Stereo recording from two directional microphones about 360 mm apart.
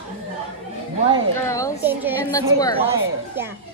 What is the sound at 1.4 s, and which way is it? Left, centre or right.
Speech, centre.